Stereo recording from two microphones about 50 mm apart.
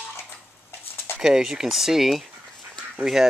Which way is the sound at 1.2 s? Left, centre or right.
Centre.